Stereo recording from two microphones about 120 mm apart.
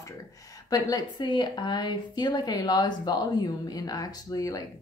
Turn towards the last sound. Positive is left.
turn(degrees=30)  # may be behind; listen again after turning